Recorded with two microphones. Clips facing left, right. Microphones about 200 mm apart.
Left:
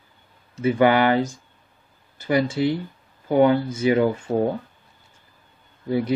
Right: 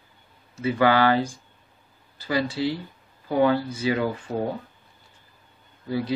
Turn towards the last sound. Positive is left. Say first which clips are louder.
# left 4 dB
turn(degrees=25)  # may be behind; listen again after turning